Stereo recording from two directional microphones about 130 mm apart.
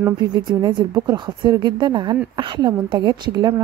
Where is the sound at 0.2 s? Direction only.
35° right (ahead or behind).